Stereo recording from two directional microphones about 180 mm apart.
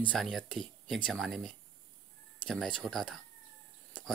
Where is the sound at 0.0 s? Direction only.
5° left (ahead or behind).